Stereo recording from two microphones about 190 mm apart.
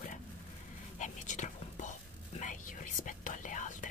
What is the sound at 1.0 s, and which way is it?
Whispering, 40° left (ahead or behind).